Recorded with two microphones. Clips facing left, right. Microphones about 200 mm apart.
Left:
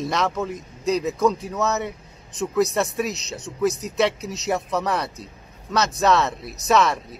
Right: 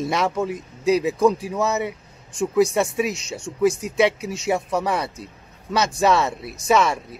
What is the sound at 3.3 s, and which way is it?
Speech, 30° right (ahead or behind).